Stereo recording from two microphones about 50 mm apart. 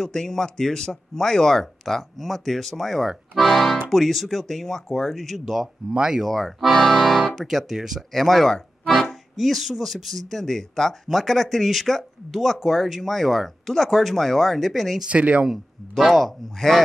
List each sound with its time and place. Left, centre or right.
0.0 s speech: centre
5.9 s speech: centre
6.2 s speech: centre
7.3 s speech: centre
8.8 s accordion: centre
9.1 s speech: centre
15.0 s speech: right
15.9 s speech: centre